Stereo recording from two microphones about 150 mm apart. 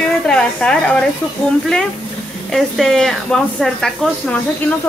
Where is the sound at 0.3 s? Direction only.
5° left (ahead or behind).